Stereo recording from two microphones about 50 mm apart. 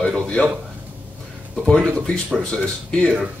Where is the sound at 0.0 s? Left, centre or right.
Centre.